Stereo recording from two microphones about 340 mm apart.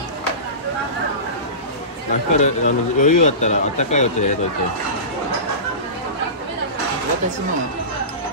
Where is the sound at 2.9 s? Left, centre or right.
Left.